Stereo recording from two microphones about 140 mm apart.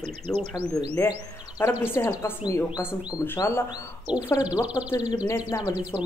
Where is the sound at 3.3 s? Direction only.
20° left (ahead or behind).